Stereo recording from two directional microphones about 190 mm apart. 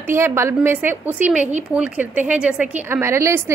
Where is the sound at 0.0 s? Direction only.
15° right (ahead or behind).